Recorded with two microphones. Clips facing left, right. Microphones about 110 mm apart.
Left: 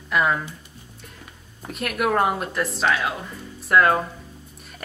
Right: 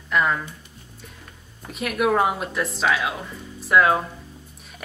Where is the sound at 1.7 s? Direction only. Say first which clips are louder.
Right 2 dB; centre (ahead or behind).